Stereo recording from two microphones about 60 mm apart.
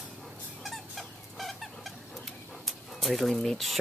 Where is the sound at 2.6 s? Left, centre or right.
Centre.